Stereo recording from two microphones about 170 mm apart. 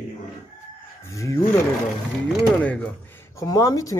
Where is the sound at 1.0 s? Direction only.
15° left (ahead or behind).